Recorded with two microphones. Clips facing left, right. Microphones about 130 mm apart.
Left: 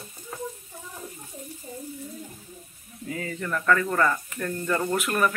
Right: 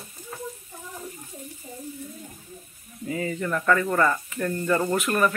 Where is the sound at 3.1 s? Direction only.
5° right (ahead or behind).